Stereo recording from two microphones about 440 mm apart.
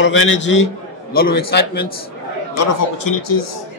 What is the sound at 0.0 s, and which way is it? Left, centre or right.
A man's voice, left.